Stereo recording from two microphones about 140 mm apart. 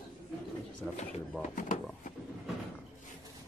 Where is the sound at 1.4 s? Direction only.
65° left (ahead or behind).